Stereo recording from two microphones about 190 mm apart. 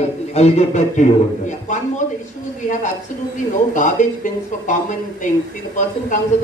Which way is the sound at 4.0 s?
40° left (ahead or behind).